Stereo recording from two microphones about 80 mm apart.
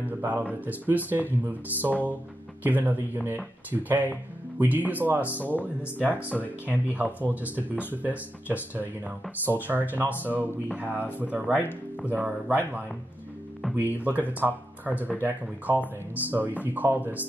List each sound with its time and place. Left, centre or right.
0.0 s speech: right
6.1 s speech: left
6.4 s speech: centre
14.0 s speech: right